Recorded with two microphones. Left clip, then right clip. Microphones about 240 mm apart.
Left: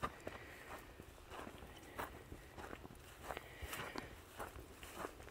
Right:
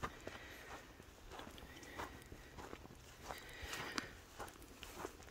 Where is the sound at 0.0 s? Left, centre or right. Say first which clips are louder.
Left 2 dB; left.